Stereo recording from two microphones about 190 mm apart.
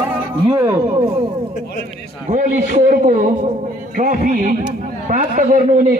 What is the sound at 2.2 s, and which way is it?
A man's voice, 40° right (ahead or behind).